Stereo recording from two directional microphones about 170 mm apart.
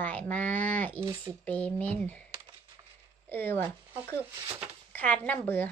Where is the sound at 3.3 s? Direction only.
10° left (ahead or behind).